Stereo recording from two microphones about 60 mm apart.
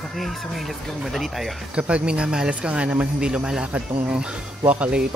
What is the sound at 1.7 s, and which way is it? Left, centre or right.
Speech, centre.